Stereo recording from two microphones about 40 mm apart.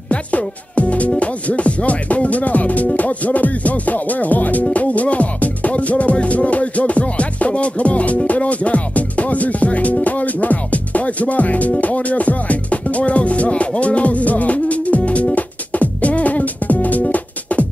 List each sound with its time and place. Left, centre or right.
0.1 s speech: left
1.2 s music: left